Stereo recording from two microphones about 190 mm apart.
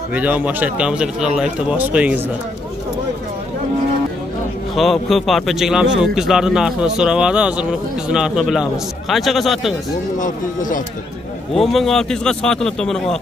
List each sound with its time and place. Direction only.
0.1 s a man's voice: 10° right (ahead or behind)
4.7 s a man's voice: centre (ahead or behind)
10.1 s speech: 45° left (ahead or behind)
11.5 s a man's voice: centre (ahead or behind)